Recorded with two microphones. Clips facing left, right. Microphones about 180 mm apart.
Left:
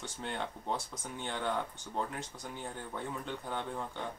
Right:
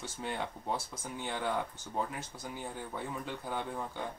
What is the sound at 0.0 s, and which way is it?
Speech, 5° right (ahead or behind).